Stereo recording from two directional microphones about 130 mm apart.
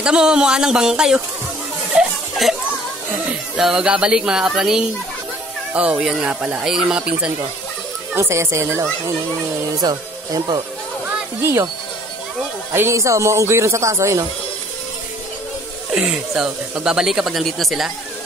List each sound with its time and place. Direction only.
0.0 s speech: 5° right (ahead or behind)
2.0 s a sound: centre (ahead or behind)
3.5 s speech: 5° right (ahead or behind)
8.1 s speech: 20° right (ahead or behind)
11.1 s a sound: 20° right (ahead or behind)
12.7 s speech: 20° right (ahead or behind)
15.9 s speech: 5° right (ahead or behind)